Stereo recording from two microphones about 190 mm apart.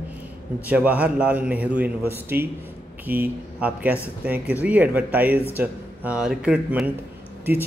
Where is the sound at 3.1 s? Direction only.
50° right (ahead or behind).